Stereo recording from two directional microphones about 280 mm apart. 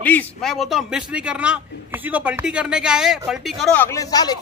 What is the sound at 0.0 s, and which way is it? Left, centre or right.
A man's voice, centre.